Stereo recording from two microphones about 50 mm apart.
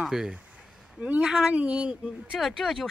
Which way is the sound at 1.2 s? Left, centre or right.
Centre.